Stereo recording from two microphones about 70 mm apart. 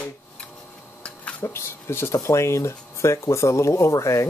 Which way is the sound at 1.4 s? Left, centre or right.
Left.